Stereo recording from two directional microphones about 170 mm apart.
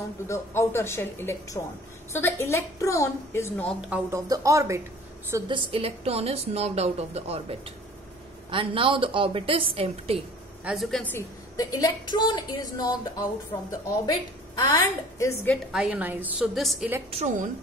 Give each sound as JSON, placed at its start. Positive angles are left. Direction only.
{"t": 0.3, "sound": "a woman's voice", "side_deg": 15}
{"t": 3.9, "sound": "a woman's voice", "side_deg": -20}
{"t": 5.5, "sound": "a woman's voice", "side_deg": -35}
{"t": 10.6, "sound": "a woman's voice", "side_deg": 0}
{"t": 11.1, "sound": "a woman's voice", "side_deg": 20}
{"t": 15.5, "sound": "a woman's voice", "side_deg": -5}
{"t": 17.1, "sound": "a woman's voice", "side_deg": -40}